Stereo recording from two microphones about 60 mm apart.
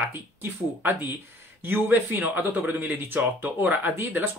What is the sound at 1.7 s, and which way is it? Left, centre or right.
Speech, right.